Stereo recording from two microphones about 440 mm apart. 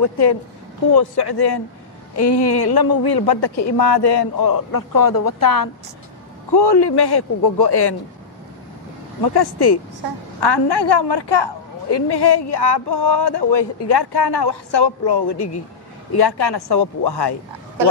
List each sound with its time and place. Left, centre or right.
0.9 s a woman's voice: left
6.5 s a woman's voice: left
9.3 s a woman's voice: left